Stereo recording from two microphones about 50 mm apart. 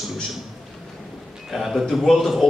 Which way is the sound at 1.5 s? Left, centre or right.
Centre.